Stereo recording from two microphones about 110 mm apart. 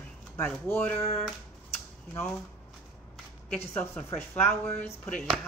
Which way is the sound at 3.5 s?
20° left (ahead or behind).